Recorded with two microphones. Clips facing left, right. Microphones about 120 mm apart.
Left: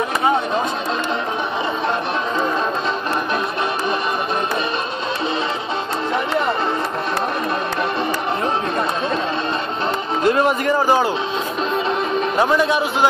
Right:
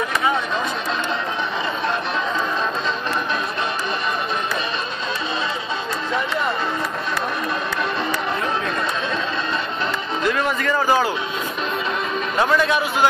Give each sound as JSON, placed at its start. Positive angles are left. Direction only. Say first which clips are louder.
{"t": 10.2, "sound": "a man's voice", "louder": "left 5 dB", "side_deg": 25}
{"t": 12.4, "sound": "a man's voice", "louder": "left 1 dB", "side_deg": 15}